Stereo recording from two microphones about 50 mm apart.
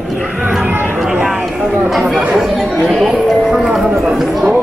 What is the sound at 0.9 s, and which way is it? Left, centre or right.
Music, centre.